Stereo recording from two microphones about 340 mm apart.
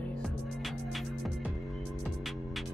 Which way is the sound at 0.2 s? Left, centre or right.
Centre.